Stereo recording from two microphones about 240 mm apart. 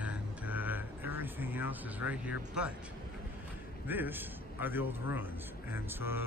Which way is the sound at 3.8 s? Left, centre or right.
Centre.